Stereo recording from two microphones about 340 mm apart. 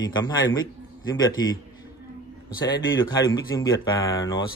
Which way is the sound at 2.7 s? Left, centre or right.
Left.